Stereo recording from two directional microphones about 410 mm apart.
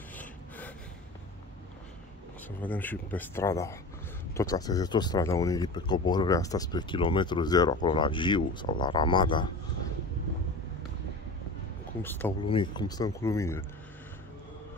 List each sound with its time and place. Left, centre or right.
0.1 s a sound: centre
2.6 s speech: centre
12.0 s speech: centre